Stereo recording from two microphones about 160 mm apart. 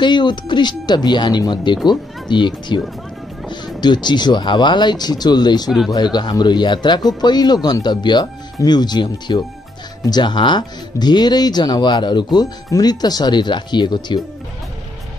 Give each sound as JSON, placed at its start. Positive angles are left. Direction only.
{"t": 0.0, "sound": "speech", "side_deg": 30}